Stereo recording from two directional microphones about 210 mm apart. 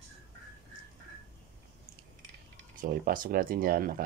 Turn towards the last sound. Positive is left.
turn(degrees=-45)  # may be behind; listen again after turning